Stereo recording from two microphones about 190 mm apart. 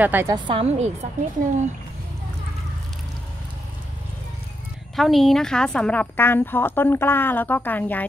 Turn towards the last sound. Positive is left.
turn(degrees=10)  # may be behind; listen again after turning